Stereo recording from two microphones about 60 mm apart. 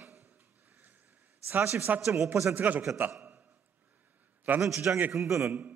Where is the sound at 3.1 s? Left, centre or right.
Right.